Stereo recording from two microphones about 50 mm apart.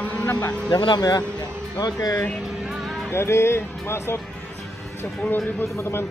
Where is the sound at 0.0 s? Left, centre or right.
Left.